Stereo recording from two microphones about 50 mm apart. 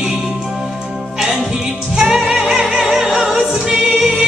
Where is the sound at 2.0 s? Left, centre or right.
Centre.